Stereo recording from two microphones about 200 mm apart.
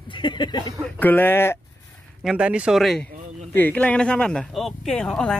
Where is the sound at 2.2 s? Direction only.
5° right (ahead or behind).